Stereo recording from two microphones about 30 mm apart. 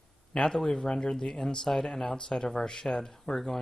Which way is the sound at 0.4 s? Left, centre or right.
Centre.